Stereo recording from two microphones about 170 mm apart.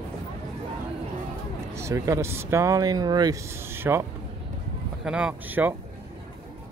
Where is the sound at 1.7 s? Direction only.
15° right (ahead or behind).